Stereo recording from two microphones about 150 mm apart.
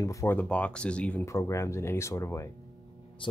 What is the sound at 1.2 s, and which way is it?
Speech, 20° left (ahead or behind).